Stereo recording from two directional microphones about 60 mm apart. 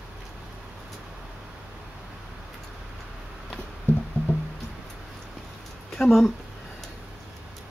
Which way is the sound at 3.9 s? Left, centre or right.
Left.